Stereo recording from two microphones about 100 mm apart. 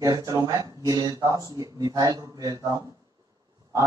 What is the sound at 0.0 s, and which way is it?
A man's voice, 35° right (ahead or behind).